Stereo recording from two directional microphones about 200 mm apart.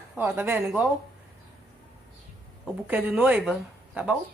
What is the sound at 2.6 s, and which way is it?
A woman's voice, 5° right (ahead or behind).